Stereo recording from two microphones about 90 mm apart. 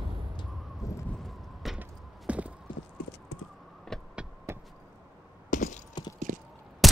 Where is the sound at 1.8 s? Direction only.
15° right (ahead or behind).